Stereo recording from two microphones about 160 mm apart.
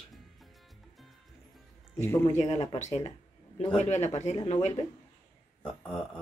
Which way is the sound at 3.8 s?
45° left (ahead or behind).